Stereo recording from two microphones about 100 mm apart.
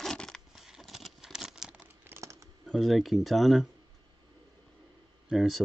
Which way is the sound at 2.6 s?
Centre (ahead or behind).